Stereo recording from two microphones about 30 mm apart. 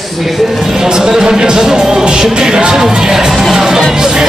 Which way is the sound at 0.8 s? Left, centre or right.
Right.